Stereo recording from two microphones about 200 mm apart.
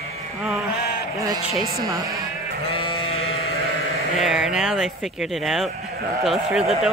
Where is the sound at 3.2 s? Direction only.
90° left.